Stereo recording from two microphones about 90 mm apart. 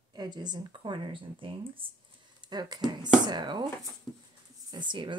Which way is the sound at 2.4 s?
50° right (ahead or behind).